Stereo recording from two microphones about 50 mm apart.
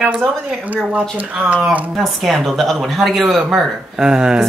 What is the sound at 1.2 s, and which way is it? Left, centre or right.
Speech, right.